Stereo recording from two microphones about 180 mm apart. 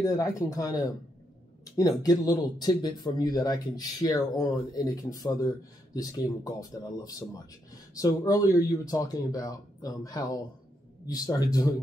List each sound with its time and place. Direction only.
0.0 s speech: 20° left (ahead or behind)